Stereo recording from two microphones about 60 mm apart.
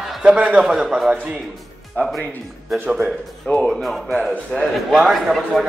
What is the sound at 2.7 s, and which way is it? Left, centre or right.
A man's voice, centre.